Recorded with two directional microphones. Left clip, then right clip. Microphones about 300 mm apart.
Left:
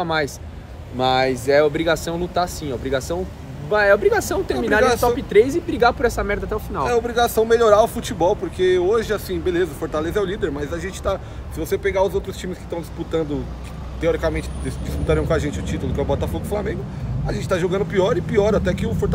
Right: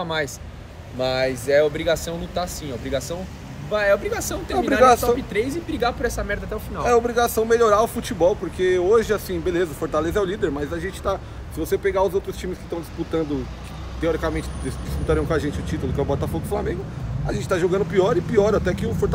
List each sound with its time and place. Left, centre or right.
0.0 s speech: centre
7.1 s speech: centre